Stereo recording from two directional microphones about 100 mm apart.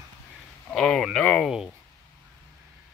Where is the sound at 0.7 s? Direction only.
5° left (ahead or behind).